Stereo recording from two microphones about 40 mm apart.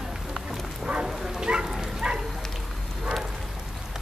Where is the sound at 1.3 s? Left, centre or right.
Right.